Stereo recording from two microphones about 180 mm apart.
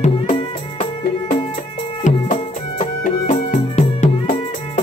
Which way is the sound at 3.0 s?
50° left (ahead or behind).